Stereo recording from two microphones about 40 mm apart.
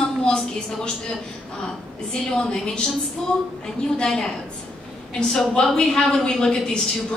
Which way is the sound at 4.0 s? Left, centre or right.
Left.